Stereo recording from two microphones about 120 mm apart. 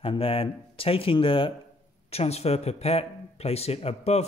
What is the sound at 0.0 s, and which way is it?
Speech, 50° left (ahead or behind).